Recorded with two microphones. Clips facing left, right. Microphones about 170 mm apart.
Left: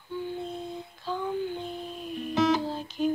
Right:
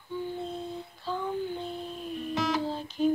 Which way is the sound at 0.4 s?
10° left (ahead or behind).